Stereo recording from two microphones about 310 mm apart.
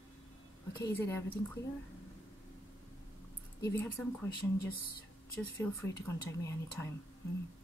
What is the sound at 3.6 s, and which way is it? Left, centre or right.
Speech, centre.